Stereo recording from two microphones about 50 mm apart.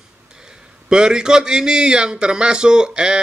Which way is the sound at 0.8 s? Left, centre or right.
Centre.